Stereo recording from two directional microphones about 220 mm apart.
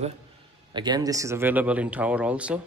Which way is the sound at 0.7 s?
20° right (ahead or behind).